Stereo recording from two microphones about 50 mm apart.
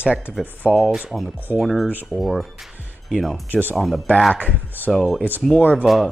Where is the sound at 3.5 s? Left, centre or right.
Right.